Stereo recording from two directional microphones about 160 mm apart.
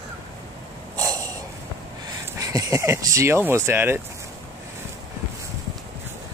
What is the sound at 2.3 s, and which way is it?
Speech, 20° right (ahead or behind).